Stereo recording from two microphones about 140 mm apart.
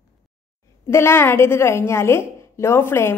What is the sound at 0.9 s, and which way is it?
A woman's voice, 20° left (ahead or behind).